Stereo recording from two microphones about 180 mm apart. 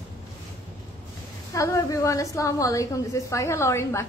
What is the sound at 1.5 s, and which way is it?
A woman's voice, 15° left (ahead or behind).